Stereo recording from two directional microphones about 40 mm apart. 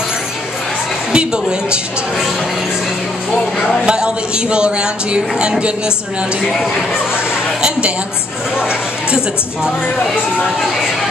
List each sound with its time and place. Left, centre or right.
1.1 s a man's voice: right
3.3 s speech: centre
3.8 s a man's voice: right